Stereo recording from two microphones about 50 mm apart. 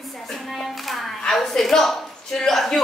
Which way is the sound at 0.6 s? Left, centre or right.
Centre.